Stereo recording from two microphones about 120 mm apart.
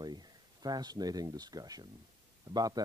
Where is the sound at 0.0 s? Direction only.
35° right (ahead or behind).